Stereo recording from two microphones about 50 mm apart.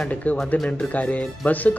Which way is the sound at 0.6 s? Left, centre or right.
Left.